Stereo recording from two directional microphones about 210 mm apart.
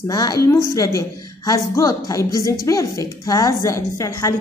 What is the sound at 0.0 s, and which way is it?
A woman's voice, 20° left (ahead or behind).